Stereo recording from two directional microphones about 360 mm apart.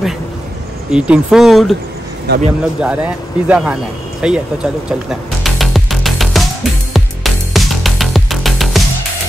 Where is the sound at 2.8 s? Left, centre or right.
Centre.